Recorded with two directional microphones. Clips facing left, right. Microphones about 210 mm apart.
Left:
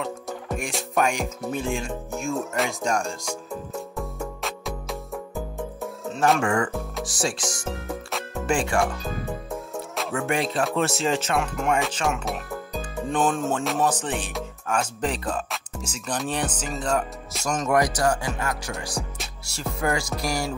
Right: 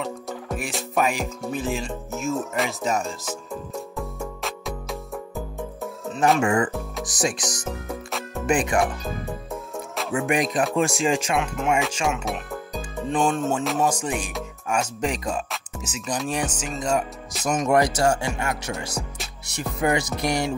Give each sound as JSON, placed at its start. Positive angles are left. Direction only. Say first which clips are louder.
{"t": 0.0, "sound": "music", "louder": "right 1 dB", "side_deg": 0}
{"t": 6.4, "sound": "speech", "louder": "right 2 dB", "side_deg": -15}
{"t": 7.6, "sound": "music", "louder": "even", "side_deg": 0}
{"t": 8.5, "sound": "speech", "louder": "right 2 dB", "side_deg": -20}
{"t": 9.5, "sound": "music", "louder": "even", "side_deg": 0}
{"t": 10.1, "sound": "speech", "louder": "right 3 dB", "side_deg": -15}
{"t": 11.3, "sound": "speech", "louder": "right 1 dB", "side_deg": 0}
{"t": 13.8, "sound": "speech", "louder": "right 1 dB", "side_deg": -10}
{"t": 17.6, "sound": "speech", "louder": "right 2 dB", "side_deg": -25}